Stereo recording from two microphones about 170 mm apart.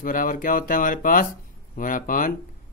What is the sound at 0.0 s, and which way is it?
Speech, 55° left (ahead or behind).